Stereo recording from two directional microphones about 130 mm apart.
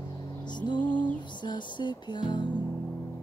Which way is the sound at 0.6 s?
35° left (ahead or behind).